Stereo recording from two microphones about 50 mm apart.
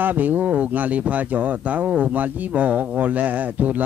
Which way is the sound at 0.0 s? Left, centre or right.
Right.